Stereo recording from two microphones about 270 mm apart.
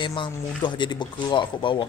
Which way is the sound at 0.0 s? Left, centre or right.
Centre.